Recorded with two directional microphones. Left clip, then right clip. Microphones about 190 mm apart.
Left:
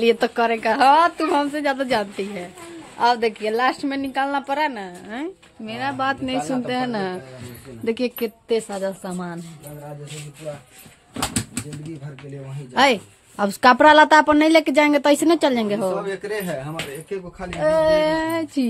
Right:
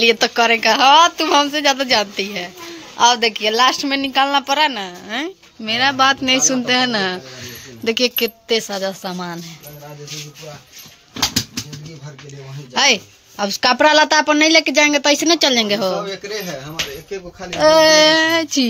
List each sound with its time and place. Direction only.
0.0 s speech: centre (ahead or behind)
12.7 s speech: 5° left (ahead or behind)
13.4 s speech: 20° left (ahead or behind)
17.6 s child singing: 25° right (ahead or behind)
17.9 s speech: centre (ahead or behind)